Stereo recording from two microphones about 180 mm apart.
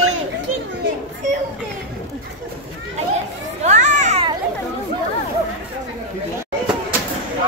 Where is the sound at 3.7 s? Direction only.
40° right (ahead or behind).